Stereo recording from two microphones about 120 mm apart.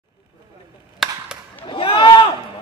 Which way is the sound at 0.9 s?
5° right (ahead or behind).